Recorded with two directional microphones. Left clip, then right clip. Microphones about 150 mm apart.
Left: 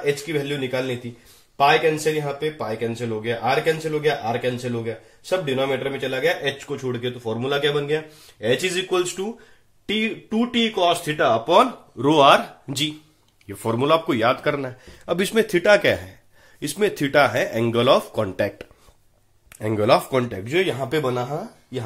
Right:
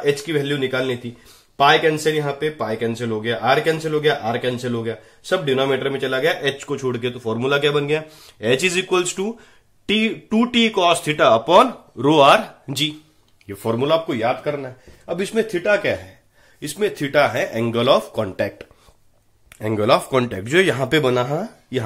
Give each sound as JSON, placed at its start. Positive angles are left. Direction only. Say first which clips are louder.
{"t": 0.1, "sound": "a man's voice", "louder": "right 4 dB", "side_deg": -40}
{"t": 12.0, "sound": "speech", "louder": "right 2 dB", "side_deg": -10}
{"t": 13.5, "sound": "speech", "louder": "right 1 dB", "side_deg": 0}
{"t": 14.0, "sound": "speech", "louder": "left 1 dB", "side_deg": 25}
{"t": 20.2, "sound": "speech", "louder": "right 3 dB", "side_deg": -15}
{"t": 20.4, "sound": "a man's voice", "louder": "right 7 dB", "side_deg": -40}
{"t": 20.7, "sound": "speech", "louder": "right 5 dB", "side_deg": -50}